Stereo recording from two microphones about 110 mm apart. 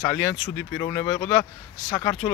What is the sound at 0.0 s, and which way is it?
Speech, 10° left (ahead or behind).